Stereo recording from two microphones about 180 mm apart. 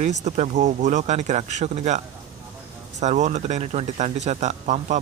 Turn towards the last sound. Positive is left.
turn(degrees=-40)  # may be behind; listen again after turning